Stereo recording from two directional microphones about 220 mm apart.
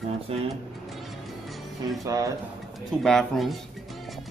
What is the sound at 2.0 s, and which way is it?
Speech, 15° right (ahead or behind).